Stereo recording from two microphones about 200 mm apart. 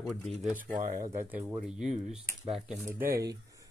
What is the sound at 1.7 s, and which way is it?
Speech, centre (ahead or behind).